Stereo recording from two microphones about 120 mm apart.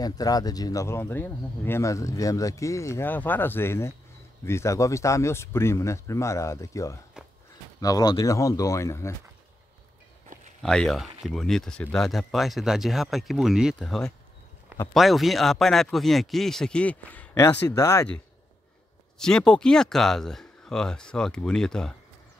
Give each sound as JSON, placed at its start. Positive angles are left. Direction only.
{"t": 0.0, "sound": "speech", "side_deg": 30}
{"t": 10.6, "sound": "speech", "side_deg": 5}
{"t": 19.1, "sound": "speech", "side_deg": 5}